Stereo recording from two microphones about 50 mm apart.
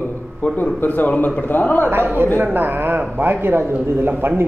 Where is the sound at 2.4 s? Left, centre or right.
Right.